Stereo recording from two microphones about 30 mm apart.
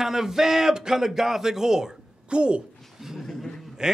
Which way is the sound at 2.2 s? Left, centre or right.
Right.